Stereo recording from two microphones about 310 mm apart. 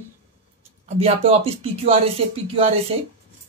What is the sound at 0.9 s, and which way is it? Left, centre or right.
Speech, centre.